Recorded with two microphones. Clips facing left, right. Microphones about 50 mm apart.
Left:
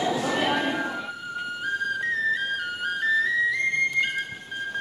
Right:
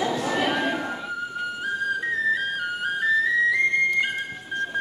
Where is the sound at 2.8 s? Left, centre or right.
Centre.